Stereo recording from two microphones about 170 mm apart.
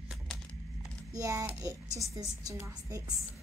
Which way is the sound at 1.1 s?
20° right (ahead or behind).